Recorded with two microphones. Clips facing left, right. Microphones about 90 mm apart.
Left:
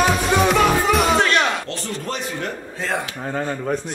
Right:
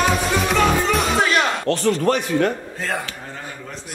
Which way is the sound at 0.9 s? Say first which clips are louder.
Left 2 dB; 5° right (ahead or behind).